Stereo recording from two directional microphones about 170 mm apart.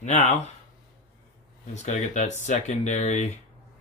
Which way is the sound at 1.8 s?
45° left (ahead or behind).